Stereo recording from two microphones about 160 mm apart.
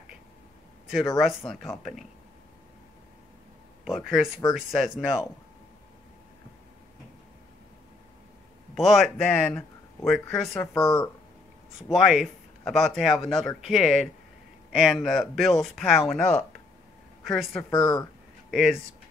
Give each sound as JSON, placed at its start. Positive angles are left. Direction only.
{"t": 1.8, "sound": "speech", "side_deg": 0}
{"t": 3.8, "sound": "speech", "side_deg": 0}
{"t": 8.7, "sound": "speech", "side_deg": 0}
{"t": 10.8, "sound": "speech", "side_deg": 20}
{"t": 11.9, "sound": "speech", "side_deg": 0}
{"t": 17.6, "sound": "speech", "side_deg": 25}
{"t": 18.5, "sound": "speech", "side_deg": 0}